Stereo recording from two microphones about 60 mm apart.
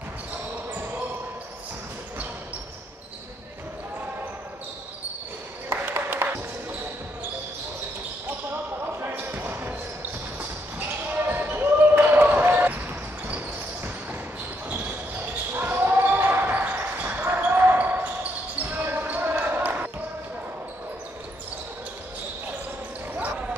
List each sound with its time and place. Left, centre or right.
5.7 s a sound: right
9.0 s basketball bounce: right
11.1 s basketball bounce: right
15.5 s basketball bounce: right